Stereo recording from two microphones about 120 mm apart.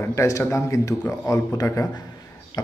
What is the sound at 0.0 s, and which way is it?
Speech, 25° left (ahead or behind).